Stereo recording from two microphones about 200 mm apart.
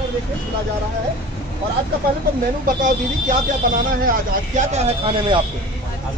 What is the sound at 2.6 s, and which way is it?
Speech, 40° right (ahead or behind).